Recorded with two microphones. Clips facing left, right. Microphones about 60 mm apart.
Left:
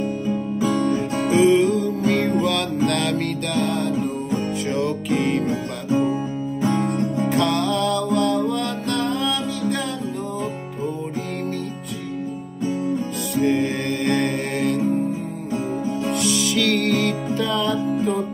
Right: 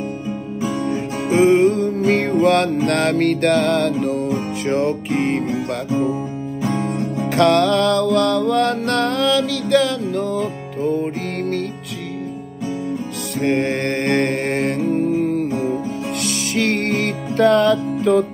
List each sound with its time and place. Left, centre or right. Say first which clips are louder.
0.8 s music: left 1 dB; right
4.3 s music: right 3 dB; right
7.2 s music: right 8 dB; right
10.3 s music: right 5 dB; right
13.4 s music: right 2 dB; right
14.9 s music: right 5 dB; right
16.2 s music: right 1 dB; right
16.6 s music: right 1 dB; right
17.4 s music: right 11 dB; right